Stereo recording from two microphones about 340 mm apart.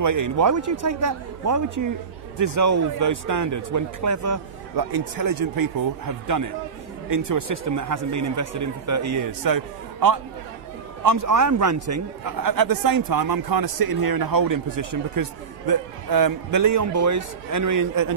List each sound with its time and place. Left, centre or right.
0.0 s speech: right
4.7 s speech: right
7.1 s speech: right
9.4 s a man's voice: right
11.1 s speech: right
12.3 s a man's voice: right